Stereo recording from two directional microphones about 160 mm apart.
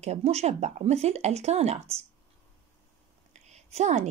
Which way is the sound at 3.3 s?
45° right (ahead or behind).